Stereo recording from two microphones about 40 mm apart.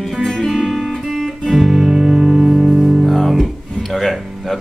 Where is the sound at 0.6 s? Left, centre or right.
Centre.